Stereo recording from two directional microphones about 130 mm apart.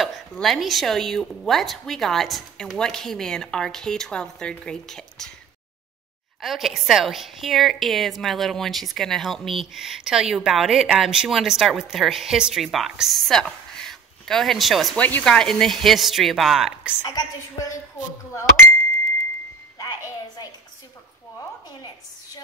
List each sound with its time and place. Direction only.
0.0 s a woman's voice: centre (ahead or behind)
6.4 s a woman's voice: centre (ahead or behind)
15.0 s a woman's voice: 10° left (ahead or behind); by 16.9 s 5° right (ahead or behind)
17.0 s a woman's voice: 30° left (ahead or behind)
19.8 s wind chime: 30° left (ahead or behind)